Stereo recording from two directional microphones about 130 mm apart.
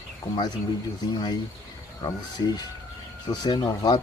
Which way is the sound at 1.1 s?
35° left (ahead or behind).